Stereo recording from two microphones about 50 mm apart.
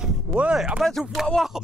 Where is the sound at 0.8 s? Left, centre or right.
Centre.